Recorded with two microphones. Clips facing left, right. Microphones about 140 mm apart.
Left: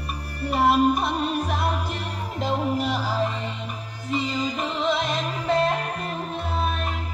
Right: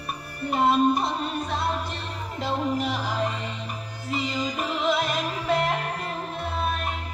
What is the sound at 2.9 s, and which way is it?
Music, 40° left (ahead or behind).